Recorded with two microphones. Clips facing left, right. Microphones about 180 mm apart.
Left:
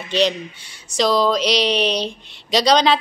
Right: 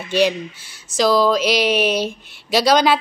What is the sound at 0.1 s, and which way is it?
Speech, 5° right (ahead or behind).